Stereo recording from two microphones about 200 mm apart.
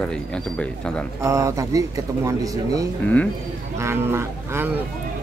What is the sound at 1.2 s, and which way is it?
Speech, 15° right (ahead or behind).